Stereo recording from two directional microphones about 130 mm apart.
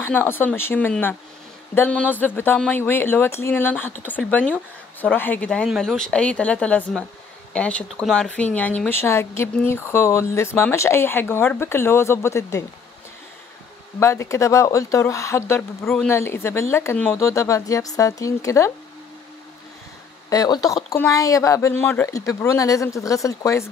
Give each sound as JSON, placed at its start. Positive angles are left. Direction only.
{"t": 0.0, "sound": "speech", "side_deg": 15}
{"t": 13.9, "sound": "speech", "side_deg": 20}
{"t": 15.8, "sound": "speech", "side_deg": 0}
{"t": 16.1, "sound": "speech", "side_deg": 20}
{"t": 16.9, "sound": "speech", "side_deg": 10}
{"t": 17.2, "sound": "speech", "side_deg": 25}
{"t": 20.2, "sound": "speech", "side_deg": 30}